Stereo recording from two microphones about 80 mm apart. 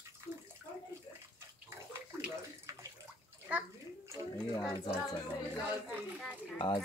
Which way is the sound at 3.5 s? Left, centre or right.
Centre.